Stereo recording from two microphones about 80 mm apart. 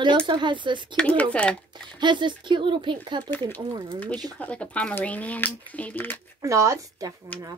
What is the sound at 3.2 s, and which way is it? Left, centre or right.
Speech, left.